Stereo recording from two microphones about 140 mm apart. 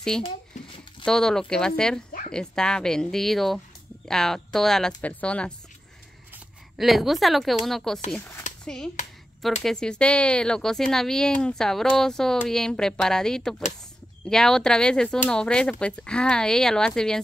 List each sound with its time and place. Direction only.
1.0 s speech: 5° left (ahead or behind)
6.8 s speech: centre (ahead or behind)
8.2 s a sound: 15° left (ahead or behind)
8.6 s speech: 5° left (ahead or behind)